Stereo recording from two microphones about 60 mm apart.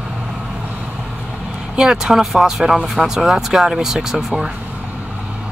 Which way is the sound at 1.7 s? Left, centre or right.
Centre.